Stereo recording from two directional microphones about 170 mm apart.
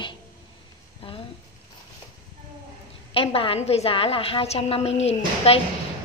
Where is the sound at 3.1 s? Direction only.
30° left (ahead or behind).